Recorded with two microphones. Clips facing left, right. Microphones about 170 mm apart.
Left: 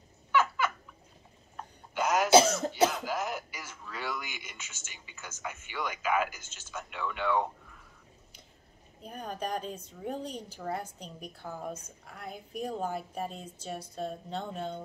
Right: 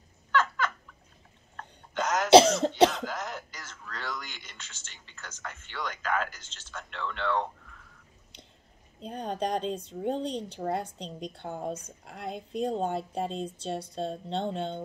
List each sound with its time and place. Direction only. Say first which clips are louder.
0.3 s a sound: even; 10° left (ahead or behind)
2.9 s throat clearing: left 2 dB; 10° left (ahead or behind)
9.0 s a woman's voice: right 5 dB; 30° right (ahead or behind)